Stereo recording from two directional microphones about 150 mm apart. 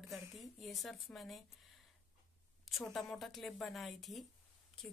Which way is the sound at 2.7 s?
Centre (ahead or behind).